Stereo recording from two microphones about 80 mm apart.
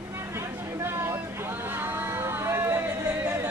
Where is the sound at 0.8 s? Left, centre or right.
Right.